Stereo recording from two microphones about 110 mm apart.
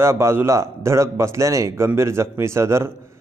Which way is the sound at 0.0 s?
25° right (ahead or behind).